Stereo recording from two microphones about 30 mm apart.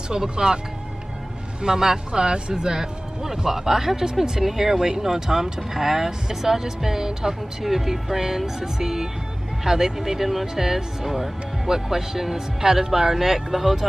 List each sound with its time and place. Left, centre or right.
0.1 s speech: right
1.6 s speech: centre